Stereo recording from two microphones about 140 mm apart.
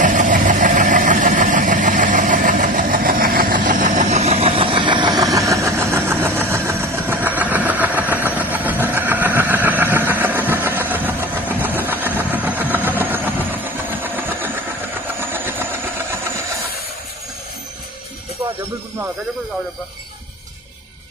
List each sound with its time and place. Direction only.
0.0 s vehicle: 65° right (ahead or behind); by 14.5 s 15° right (ahead or behind)
15.1 s train: 15° right (ahead or behind)